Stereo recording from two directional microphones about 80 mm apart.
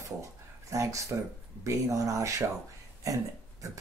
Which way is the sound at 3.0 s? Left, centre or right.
Right.